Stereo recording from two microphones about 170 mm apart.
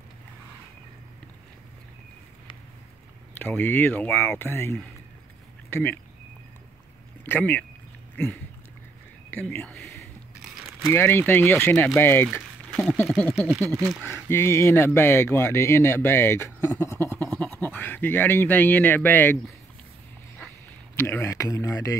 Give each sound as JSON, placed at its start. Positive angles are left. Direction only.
{"t": 3.3, "sound": "speech", "side_deg": 10}
{"t": 7.2, "sound": "speech", "side_deg": 10}
{"t": 9.3, "sound": "speech", "side_deg": 10}
{"t": 10.9, "sound": "speech", "side_deg": 15}
{"t": 12.3, "sound": "a sound", "side_deg": 0}
{"t": 13.0, "sound": "speech", "side_deg": 0}
{"t": 14.0, "sound": "speech", "side_deg": 15}
{"t": 16.8, "sound": "bleat", "side_deg": 15}
{"t": 20.9, "sound": "speech", "side_deg": 15}